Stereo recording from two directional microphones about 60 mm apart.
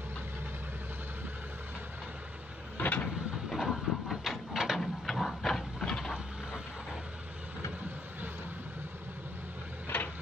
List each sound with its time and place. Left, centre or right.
2.8 s vehicle: left
3.4 s a sound: centre
4.7 s printer: centre